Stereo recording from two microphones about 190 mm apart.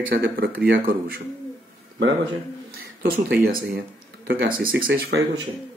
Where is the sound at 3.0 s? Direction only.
55° right (ahead or behind).